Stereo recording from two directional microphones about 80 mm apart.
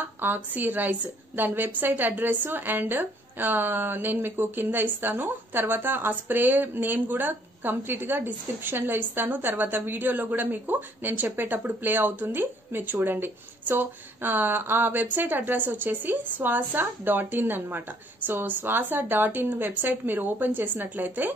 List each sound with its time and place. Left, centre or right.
0.0 s a woman's voice: right